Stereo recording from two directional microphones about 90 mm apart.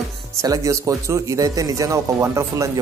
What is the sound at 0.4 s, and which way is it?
A man's voice, 40° right (ahead or behind).